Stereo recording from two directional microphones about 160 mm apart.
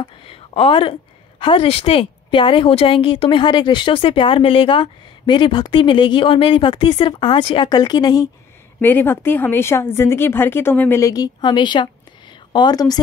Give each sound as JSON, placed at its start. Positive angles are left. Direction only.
{"t": 0.0, "sound": "speech", "side_deg": 35}
{"t": 8.8, "sound": "speech", "side_deg": 15}